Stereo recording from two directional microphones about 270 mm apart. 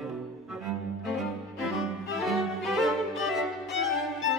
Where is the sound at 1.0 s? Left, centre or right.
Centre.